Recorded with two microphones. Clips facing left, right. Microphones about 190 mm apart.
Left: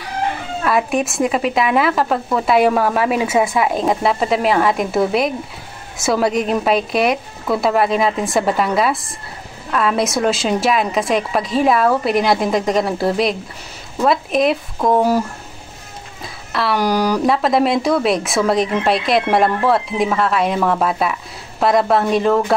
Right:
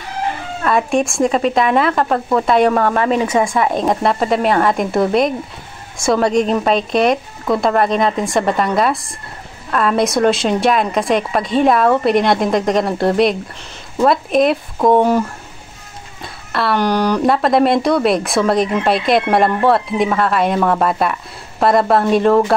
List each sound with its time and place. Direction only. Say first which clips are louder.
0.7 s speech: right 2 dB; 5° left (ahead or behind)
16.5 s speech: right 1 dB; 5° left (ahead or behind)